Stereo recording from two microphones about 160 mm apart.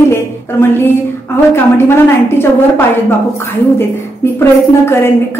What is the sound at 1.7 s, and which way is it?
A woman's voice, 15° left (ahead or behind).